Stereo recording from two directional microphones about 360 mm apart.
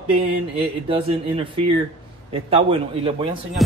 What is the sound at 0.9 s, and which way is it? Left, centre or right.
A man's voice, centre.